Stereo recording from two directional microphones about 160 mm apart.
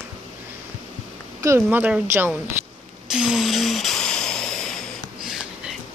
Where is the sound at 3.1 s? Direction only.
5° right (ahead or behind).